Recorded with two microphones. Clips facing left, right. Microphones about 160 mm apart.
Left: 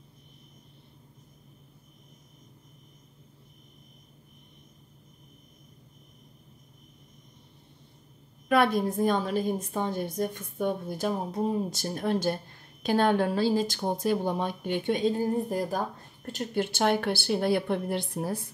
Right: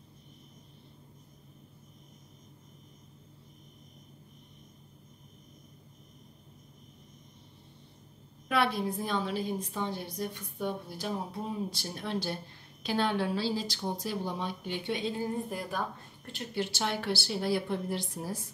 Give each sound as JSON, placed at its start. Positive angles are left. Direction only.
{"t": 8.5, "sound": "a woman's voice", "side_deg": 45}